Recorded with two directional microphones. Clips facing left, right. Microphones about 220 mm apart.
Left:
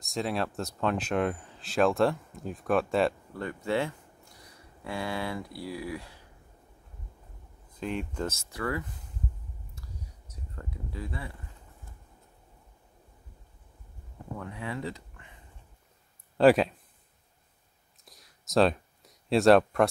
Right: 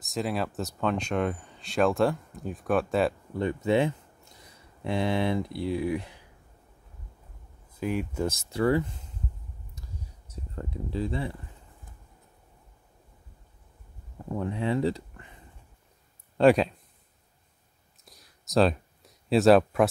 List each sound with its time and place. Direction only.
0.0 s speech: centre (ahead or behind)
3.3 s speech: 20° right (ahead or behind)
7.7 s speech: 10° right (ahead or behind)
8.5 s speech: 25° right (ahead or behind)
9.8 s a sound: 30° right (ahead or behind)
14.4 s speech: 30° right (ahead or behind)
16.3 s speech: centre (ahead or behind)
18.0 s a sound: centre (ahead or behind)